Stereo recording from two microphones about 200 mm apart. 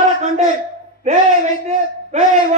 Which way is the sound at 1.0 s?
35° right (ahead or behind).